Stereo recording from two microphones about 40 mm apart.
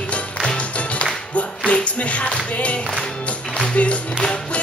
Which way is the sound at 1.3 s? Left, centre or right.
Left.